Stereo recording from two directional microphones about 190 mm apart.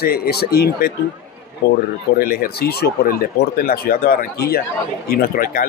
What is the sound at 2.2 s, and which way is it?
Speech, 50° left (ahead or behind).